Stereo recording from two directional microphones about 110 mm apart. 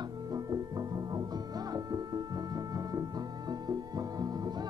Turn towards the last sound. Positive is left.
turn(degrees=-40)  # may be behind; listen again after turning